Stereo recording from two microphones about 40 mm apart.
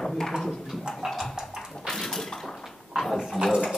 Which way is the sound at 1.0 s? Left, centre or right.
Centre.